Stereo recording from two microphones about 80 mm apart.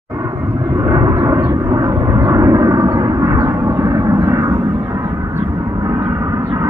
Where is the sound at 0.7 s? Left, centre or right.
Right.